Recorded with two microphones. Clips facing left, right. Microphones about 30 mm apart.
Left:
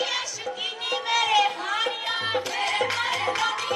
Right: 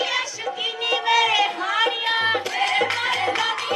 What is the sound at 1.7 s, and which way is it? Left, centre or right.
Music, right.